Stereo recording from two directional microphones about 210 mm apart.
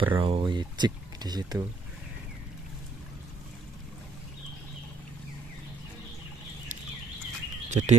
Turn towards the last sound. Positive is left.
turn(degrees=-35)  # may be behind; listen again after turning